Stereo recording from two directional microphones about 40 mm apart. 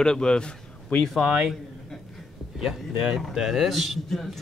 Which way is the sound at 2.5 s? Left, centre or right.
Centre.